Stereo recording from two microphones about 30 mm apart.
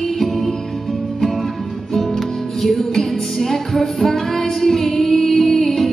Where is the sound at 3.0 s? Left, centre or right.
Centre.